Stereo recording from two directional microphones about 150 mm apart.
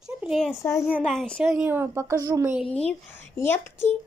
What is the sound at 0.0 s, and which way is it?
Speech, 5° right (ahead or behind).